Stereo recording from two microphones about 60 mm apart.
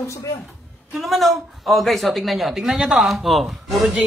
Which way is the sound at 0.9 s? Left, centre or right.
Centre.